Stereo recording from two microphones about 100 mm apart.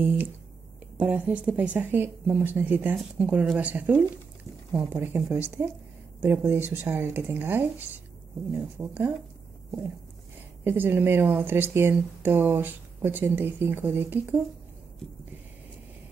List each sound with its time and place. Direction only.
0.9 s speech: 15° right (ahead or behind)
10.6 s speech: 20° right (ahead or behind)